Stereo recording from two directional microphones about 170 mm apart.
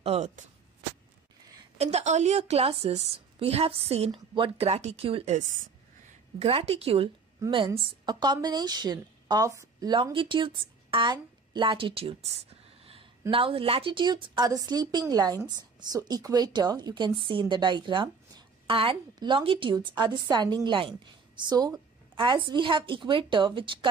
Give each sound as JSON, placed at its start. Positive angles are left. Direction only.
{"t": 0.0, "sound": "speech", "side_deg": -40}
{"t": 1.8, "sound": "a woman's voice", "side_deg": -40}
{"t": 6.4, "sound": "a woman's voice", "side_deg": -35}